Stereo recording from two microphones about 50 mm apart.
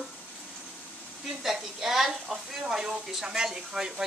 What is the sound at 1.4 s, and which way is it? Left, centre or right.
A woman's voice, centre.